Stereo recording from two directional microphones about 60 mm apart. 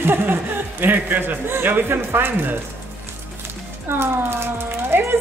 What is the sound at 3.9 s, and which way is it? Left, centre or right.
Speech, right.